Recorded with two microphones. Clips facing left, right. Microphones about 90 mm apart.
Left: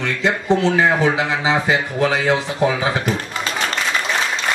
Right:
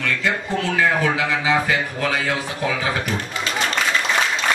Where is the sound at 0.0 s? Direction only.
25° left (ahead or behind).